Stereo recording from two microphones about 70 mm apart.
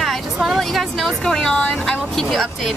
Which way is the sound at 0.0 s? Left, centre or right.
Centre.